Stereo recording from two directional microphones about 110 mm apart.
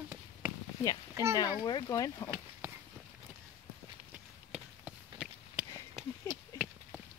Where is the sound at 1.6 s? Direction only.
35° left (ahead or behind).